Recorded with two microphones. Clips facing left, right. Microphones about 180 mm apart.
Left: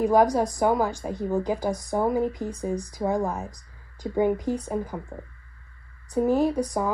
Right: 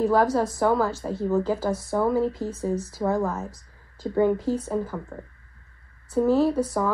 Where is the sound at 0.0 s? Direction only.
15° left (ahead or behind).